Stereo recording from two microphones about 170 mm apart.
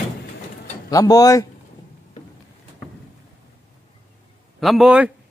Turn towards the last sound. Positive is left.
turn(degrees=-5)  # may be behind; listen again after turning